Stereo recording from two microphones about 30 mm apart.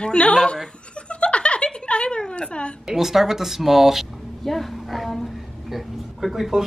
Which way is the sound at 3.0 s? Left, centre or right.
Centre.